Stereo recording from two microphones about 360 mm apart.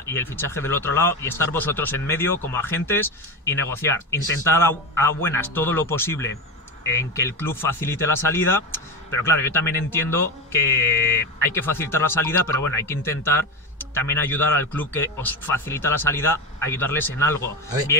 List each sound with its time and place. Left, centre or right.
0.0 s speech: centre